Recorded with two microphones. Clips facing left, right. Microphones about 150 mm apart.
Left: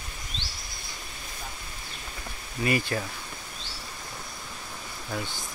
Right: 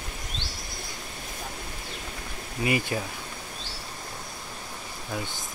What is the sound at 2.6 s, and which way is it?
Speech, 15° right (ahead or behind).